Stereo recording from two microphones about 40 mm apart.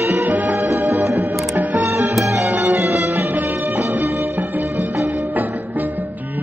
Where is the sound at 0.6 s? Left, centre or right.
Right.